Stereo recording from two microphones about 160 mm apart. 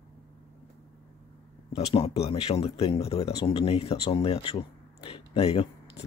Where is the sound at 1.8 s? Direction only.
40° left (ahead or behind).